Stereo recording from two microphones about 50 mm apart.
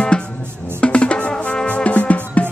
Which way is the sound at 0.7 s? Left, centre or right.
Left.